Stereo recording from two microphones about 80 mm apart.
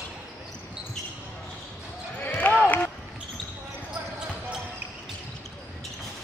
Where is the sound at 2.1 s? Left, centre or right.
Left.